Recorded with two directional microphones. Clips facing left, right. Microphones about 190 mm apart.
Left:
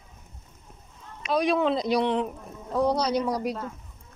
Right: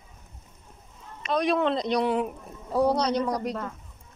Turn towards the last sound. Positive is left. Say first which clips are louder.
# even
turn(degrees=10)  # may be behind; listen again after turning